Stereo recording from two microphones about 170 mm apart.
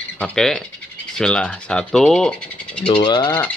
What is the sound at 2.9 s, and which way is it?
Speech, 30° left (ahead or behind).